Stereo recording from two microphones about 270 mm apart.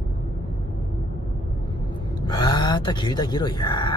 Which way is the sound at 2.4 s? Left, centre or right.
Centre.